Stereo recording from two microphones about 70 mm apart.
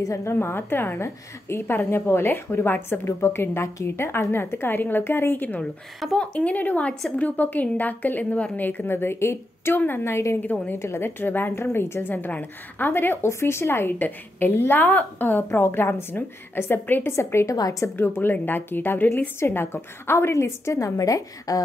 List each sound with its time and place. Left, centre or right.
0.0 s a woman's voice: left
6.1 s a woman's voice: centre
17.1 s a woman's voice: left
17.6 s a woman's voice: left
17.9 s a woman's voice: left